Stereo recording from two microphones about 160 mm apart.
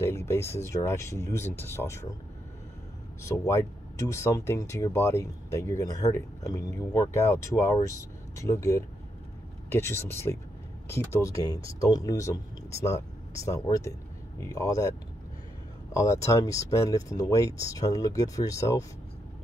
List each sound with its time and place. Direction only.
0.0 s speech: 15° left (ahead or behind)
3.3 s speech: 20° left (ahead or behind)
15.9 s speech: 20° left (ahead or behind)